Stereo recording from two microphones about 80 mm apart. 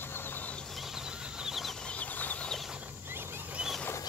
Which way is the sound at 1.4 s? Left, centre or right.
Centre.